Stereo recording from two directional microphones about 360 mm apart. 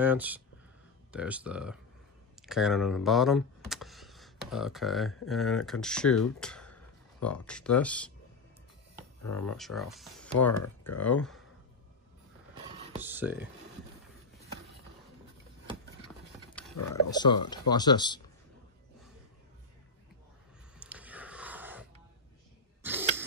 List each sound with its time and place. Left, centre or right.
0.0 s speech: centre
9.2 s speech: left
9.6 s speech: centre
12.7 s a sound: centre
13.0 s speech: centre
16.0 s clip-clop: centre
16.9 s speech: centre
20.8 s a sound: centre
22.8 s throat clearing: centre